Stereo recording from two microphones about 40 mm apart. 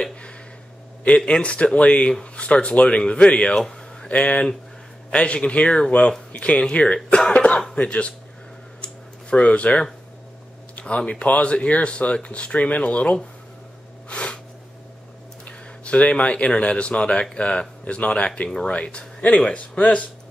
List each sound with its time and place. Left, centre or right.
0.0 s a sound: left
1.0 s a man's voice: left
3.5 s a sound: centre
4.1 s speech: left
7.3 s speech: left
8.8 s a sound: left
10.8 s speech: left
14.0 s snort: left
15.4 s speech: left